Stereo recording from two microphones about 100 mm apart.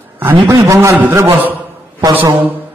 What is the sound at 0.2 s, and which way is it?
Speech, 30° right (ahead or behind).